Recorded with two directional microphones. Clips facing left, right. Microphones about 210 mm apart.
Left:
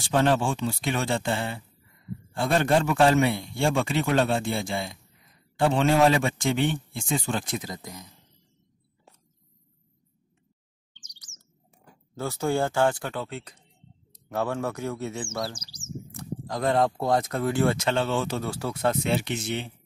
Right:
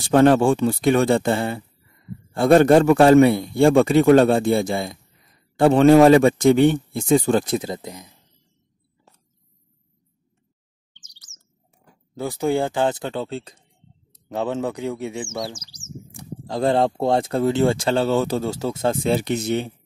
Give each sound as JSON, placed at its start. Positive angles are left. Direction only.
{"t": 0.1, "sound": "a man's voice", "side_deg": -55}
{"t": 5.6, "sound": "speech", "side_deg": -55}
{"t": 11.1, "sound": "chirp", "side_deg": -5}
{"t": 12.2, "sound": "speech", "side_deg": -15}
{"t": 16.4, "sound": "speech", "side_deg": -30}